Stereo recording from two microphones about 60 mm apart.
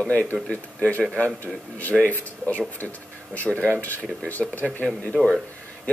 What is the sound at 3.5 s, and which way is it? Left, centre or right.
Speech, centre.